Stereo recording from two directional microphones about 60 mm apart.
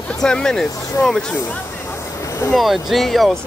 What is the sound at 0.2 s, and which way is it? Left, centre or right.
Speech, centre.